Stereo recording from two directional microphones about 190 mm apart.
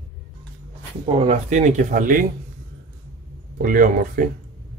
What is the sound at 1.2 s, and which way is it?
Speech, 35° right (ahead or behind).